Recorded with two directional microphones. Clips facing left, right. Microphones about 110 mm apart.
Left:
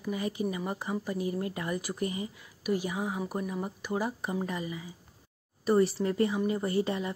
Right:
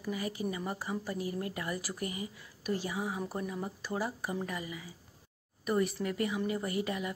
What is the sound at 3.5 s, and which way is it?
Speech, 20° left (ahead or behind).